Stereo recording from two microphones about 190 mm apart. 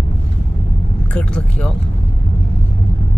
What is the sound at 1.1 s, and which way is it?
Speech, 5° left (ahead or behind).